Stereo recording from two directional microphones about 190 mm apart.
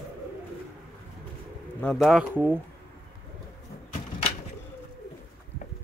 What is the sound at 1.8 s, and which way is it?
Speech, 5° left (ahead or behind).